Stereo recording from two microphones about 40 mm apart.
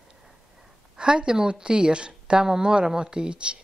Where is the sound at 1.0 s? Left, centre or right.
Right.